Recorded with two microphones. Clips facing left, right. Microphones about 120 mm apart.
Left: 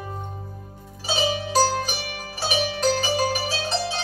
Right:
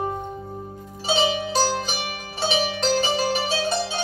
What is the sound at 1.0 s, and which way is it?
Zither, 25° right (ahead or behind).